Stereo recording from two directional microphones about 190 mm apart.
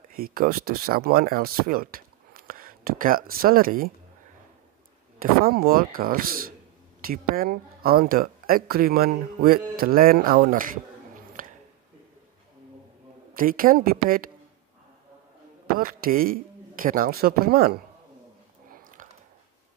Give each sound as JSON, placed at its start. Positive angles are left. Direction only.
{"t": 0.1, "sound": "speech", "side_deg": -50}
{"t": 5.4, "sound": "speech", "side_deg": -50}
{"t": 11.4, "sound": "a sound", "side_deg": -45}
{"t": 13.3, "sound": "speech", "side_deg": -50}
{"t": 15.6, "sound": "speech", "side_deg": -50}
{"t": 18.7, "sound": "a sound", "side_deg": -45}